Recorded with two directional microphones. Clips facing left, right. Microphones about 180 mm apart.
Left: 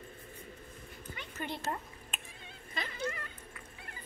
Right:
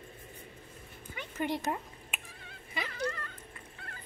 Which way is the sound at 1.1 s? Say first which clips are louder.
Right 7 dB; 15° right (ahead or behind).